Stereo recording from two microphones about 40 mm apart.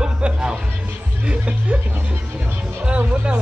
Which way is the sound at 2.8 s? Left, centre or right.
Right.